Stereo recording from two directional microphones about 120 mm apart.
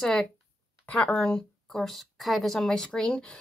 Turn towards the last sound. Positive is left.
turn(degrees=5)  # may be behind; listen again after turning